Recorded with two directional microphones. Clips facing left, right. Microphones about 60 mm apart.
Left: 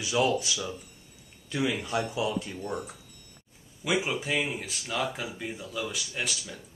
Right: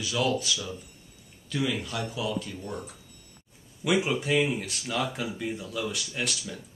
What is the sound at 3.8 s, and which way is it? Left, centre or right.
Speech, centre.